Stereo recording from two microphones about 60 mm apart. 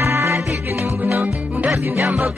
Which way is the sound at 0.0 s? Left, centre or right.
Right.